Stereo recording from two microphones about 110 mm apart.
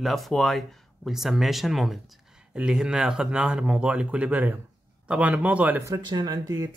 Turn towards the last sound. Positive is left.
turn(degrees=-40)  # may be behind; listen again after turning